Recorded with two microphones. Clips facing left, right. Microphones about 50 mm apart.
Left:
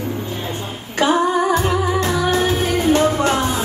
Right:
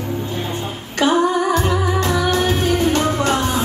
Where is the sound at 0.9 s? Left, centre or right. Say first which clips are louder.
Even; left.